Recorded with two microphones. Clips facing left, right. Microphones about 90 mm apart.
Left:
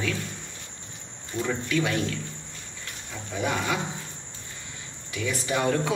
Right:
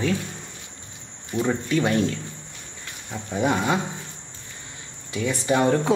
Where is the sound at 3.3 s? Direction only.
25° right (ahead or behind).